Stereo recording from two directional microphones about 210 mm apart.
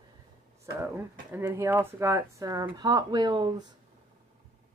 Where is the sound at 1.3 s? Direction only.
10° right (ahead or behind).